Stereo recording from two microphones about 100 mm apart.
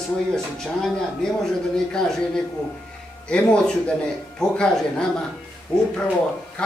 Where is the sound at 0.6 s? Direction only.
5° left (ahead or behind).